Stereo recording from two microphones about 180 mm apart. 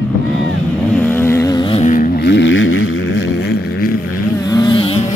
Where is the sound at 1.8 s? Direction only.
45° left (ahead or behind).